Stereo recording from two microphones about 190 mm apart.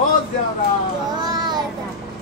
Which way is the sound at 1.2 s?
20° right (ahead or behind).